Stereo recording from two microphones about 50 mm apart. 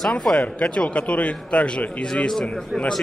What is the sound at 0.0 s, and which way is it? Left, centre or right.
Speech, centre.